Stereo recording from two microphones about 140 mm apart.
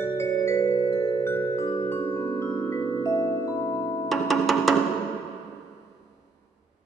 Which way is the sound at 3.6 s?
10° left (ahead or behind).